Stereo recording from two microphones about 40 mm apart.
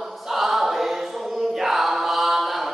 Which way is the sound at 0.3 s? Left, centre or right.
Centre.